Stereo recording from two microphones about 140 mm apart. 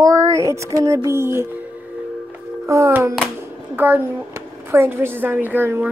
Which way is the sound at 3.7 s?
15° right (ahead or behind).